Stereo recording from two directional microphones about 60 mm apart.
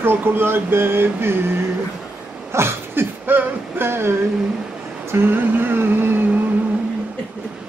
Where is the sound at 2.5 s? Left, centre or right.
Right.